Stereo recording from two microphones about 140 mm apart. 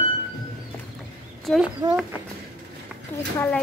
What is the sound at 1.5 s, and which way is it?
Speech, 5° left (ahead or behind).